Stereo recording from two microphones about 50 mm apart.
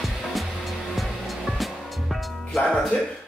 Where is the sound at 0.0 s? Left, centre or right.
Centre.